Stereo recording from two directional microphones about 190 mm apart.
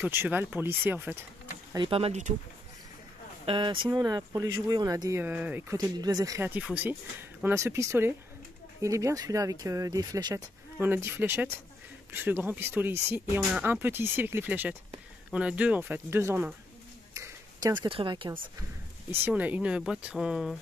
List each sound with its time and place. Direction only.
0.0 s speech: 10° right (ahead or behind)
1.7 s speech: 25° right (ahead or behind)
3.4 s speech: 25° right (ahead or behind)
17.1 s a sound: 15° right (ahead or behind)
17.8 s speech: 25° right (ahead or behind)
19.2 s speech: 10° right (ahead or behind)